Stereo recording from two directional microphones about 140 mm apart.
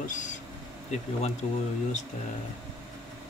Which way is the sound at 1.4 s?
60° left (ahead or behind).